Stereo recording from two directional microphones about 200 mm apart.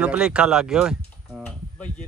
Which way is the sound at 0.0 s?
5° right (ahead or behind).